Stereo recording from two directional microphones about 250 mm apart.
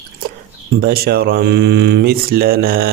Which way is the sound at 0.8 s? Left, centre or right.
Right.